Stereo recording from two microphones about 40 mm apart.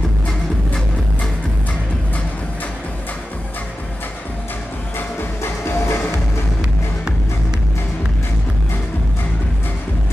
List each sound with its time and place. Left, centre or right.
4.9 s music: left